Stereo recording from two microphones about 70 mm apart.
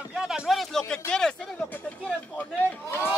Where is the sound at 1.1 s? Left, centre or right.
Centre.